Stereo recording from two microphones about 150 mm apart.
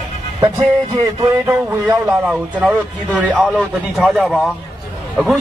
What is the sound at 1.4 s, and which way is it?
A man's voice, 15° right (ahead or behind).